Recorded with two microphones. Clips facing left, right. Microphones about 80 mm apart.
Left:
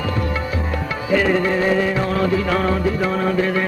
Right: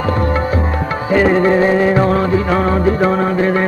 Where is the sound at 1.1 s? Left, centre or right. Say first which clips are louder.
Right 6 dB; right.